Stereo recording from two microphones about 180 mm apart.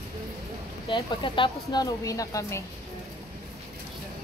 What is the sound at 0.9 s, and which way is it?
Speech, 25° left (ahead or behind).